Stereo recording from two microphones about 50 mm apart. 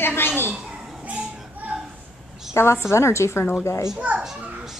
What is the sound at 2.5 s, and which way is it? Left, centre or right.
Speech, left.